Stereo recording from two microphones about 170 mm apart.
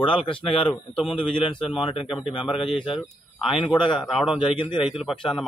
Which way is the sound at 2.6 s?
30° left (ahead or behind).